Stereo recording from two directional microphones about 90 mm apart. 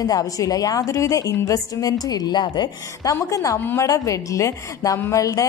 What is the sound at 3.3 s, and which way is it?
A woman's voice, 35° left (ahead or behind).